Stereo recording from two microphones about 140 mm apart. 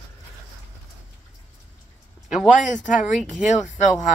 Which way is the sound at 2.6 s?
65° left (ahead or behind).